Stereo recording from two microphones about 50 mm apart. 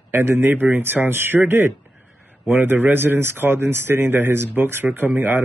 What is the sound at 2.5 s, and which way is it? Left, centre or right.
Speech, right.